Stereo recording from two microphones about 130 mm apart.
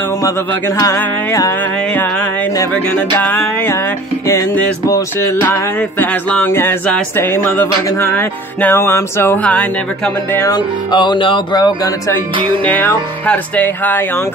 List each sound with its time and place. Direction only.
0.7 s music: 25° left (ahead or behind)
2.9 s speech: 10° left (ahead or behind)
5.4 s speech: 15° left (ahead or behind)
10.5 s music: 35° left (ahead or behind)
12.6 s speech: 10° left (ahead or behind)